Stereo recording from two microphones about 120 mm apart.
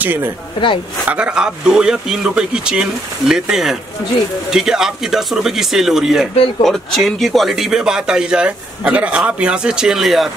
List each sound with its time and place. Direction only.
0.0 s speech: 15° right (ahead or behind)